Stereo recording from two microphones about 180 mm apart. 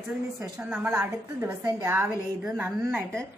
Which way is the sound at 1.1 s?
15° right (ahead or behind).